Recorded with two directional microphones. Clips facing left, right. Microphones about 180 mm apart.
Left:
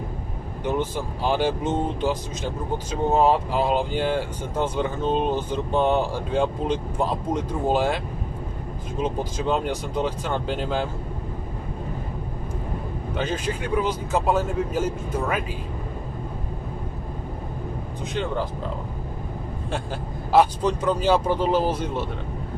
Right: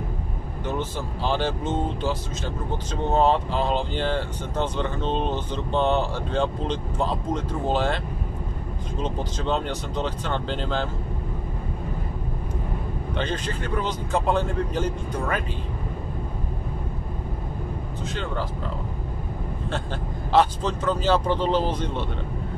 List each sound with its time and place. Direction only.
0.7 s speech: 15° left (ahead or behind)
9.0 s speech: 10° left (ahead or behind)
13.1 s speech: 5° left (ahead or behind)
18.1 s speech: 15° left (ahead or behind)
20.3 s speech: 15° left (ahead or behind)